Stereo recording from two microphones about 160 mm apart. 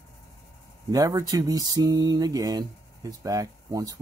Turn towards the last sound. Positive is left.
turn(degrees=-20)  # may be behind; listen again after turning